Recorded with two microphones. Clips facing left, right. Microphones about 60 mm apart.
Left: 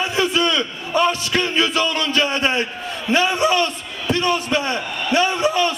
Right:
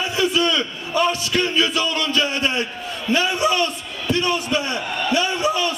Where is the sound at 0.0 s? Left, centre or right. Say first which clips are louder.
Left 1 dB; left.